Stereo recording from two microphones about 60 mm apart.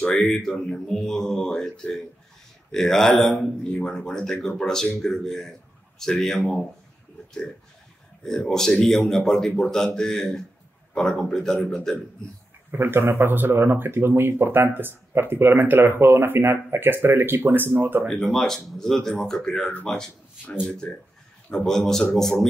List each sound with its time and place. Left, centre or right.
0.1 s a man's voice: centre
8.2 s a man's voice: centre
12.7 s speech: right
18.1 s a man's voice: centre
20.8 s a man's voice: centre